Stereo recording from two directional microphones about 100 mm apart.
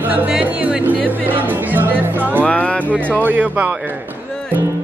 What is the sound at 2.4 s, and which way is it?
Speech, 15° left (ahead or behind).